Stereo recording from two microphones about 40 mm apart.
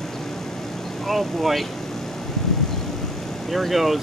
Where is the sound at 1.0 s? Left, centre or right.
Centre.